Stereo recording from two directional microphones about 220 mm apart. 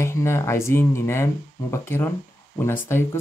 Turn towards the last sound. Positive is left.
turn(degrees=10)  # may be behind; listen again after turning